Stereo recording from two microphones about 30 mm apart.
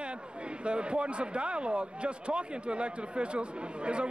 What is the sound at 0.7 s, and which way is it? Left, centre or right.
Speech, right.